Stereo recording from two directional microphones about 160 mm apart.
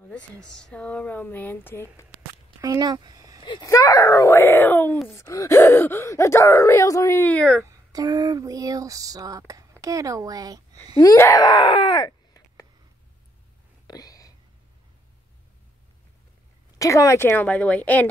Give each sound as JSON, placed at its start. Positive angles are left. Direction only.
{"t": 0.1, "sound": "speech", "side_deg": 5}
{"t": 2.6, "sound": "speech", "side_deg": -25}
{"t": 3.4, "sound": "speech", "side_deg": 25}
{"t": 7.6, "sound": "a sound", "side_deg": -20}
{"t": 11.0, "sound": "groan", "side_deg": 20}
{"t": 13.8, "sound": "whispering", "side_deg": 25}
{"t": 16.7, "sound": "speech", "side_deg": 20}